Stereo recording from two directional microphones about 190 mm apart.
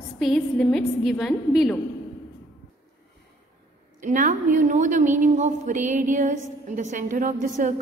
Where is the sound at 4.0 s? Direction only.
40° right (ahead or behind).